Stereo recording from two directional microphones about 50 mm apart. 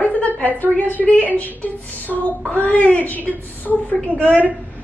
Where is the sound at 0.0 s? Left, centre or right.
Left.